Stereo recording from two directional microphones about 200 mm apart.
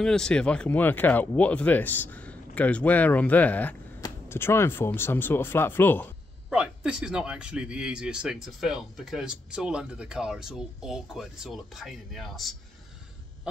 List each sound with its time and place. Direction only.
0.0 s speech: 5° left (ahead or behind)
6.5 s speech: 5° right (ahead or behind)